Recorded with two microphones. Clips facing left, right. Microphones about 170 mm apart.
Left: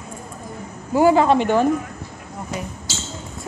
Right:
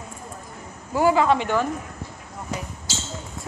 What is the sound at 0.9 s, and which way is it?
Speech, 25° left (ahead or behind).